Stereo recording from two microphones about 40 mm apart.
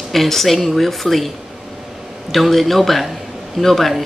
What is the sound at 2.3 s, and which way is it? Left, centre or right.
Speech, centre.